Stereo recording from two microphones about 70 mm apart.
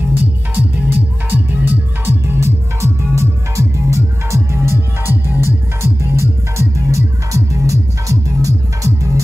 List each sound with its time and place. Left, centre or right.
0.2 s music: right